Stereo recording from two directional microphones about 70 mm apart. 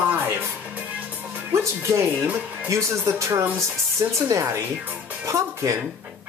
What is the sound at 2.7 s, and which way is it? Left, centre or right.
Speech, right.